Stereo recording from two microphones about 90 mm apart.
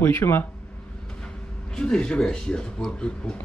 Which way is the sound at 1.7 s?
10° left (ahead or behind).